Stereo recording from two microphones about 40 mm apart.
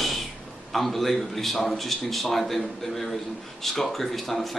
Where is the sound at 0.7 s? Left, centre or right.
Centre.